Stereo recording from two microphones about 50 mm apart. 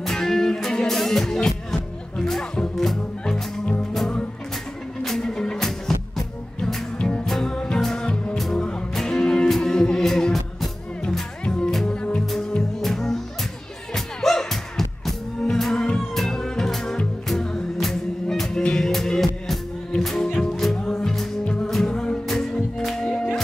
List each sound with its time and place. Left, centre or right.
0.0 s music: centre
5.0 s music: centre
7.0 s music: left
7.2 s music: centre
8.4 s music: centre